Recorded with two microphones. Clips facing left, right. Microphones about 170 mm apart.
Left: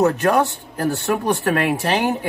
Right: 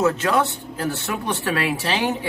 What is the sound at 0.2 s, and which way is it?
Speech, 40° left (ahead or behind).